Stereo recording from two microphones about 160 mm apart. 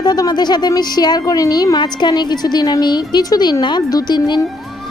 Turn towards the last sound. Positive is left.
turn(degrees=25)  # may be behind; listen again after turning